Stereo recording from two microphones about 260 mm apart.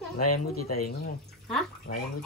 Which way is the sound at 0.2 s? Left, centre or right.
Left.